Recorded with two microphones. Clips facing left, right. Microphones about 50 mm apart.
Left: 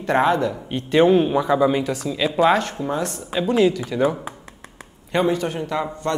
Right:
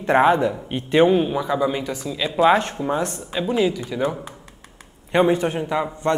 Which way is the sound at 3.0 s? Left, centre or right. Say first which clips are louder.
Right 1 dB; right.